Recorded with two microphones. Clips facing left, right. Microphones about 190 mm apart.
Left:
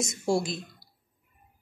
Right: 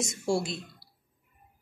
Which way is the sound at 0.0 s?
15° left (ahead or behind).